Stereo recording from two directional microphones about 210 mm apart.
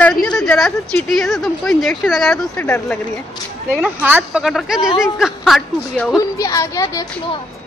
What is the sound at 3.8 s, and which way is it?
Speech, 5° right (ahead or behind).